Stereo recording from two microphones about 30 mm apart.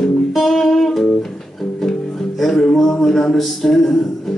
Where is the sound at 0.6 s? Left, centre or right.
Centre.